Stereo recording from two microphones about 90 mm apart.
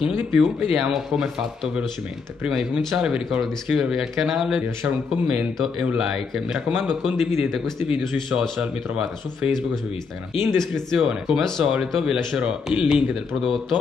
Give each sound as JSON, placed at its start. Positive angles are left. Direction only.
{"t": 0.3, "sound": "speech", "side_deg": 0}
{"t": 10.4, "sound": "speech", "side_deg": 5}
{"t": 10.9, "sound": "speech", "side_deg": -5}